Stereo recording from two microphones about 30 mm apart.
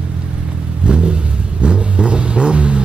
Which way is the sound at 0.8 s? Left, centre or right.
Right.